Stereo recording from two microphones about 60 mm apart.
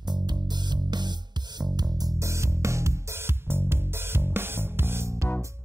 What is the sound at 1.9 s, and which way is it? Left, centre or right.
Music, right.